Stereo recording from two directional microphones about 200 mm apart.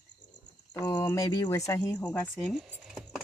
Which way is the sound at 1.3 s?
20° left (ahead or behind).